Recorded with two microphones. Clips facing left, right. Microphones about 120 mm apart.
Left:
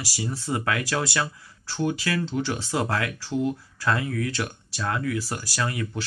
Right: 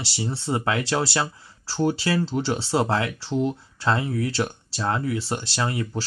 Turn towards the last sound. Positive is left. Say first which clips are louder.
# right 2 dB
turn(degrees=-30)  # may be behind; listen again after turning